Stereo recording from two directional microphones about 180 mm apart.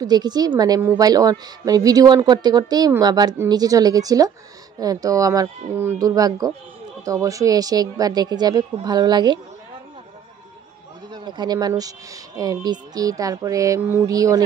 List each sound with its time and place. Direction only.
0.0 s a woman's voice: 20° right (ahead or behind)
11.1 s a woman's voice: 25° right (ahead or behind)